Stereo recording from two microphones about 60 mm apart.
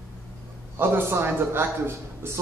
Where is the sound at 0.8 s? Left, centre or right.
Right.